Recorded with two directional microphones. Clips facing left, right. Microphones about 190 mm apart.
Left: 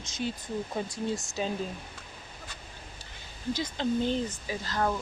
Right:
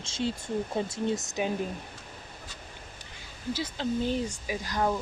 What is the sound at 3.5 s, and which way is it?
Speech, 5° right (ahead or behind).